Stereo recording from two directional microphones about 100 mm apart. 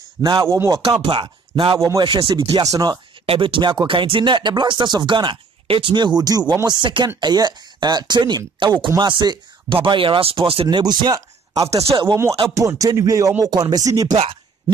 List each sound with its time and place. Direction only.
0.2 s speech: 45° right (ahead or behind)
0.5 s speech: 30° right (ahead or behind)
1.0 s speech: 55° right (ahead or behind)
1.8 s speech: 35° right (ahead or behind)
2.0 s speech: 55° right (ahead or behind)
2.6 s speech: 40° right (ahead or behind)
3.3 s speech: 60° right (ahead or behind)
9.8 s speech: 60° right (ahead or behind)
10.8 s speech: 45° right (ahead or behind)